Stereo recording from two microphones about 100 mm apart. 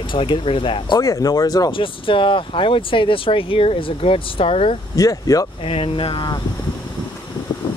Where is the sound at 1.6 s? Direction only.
60° left (ahead or behind).